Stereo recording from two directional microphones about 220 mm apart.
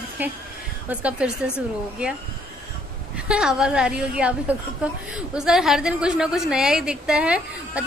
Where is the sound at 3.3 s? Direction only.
5° right (ahead or behind).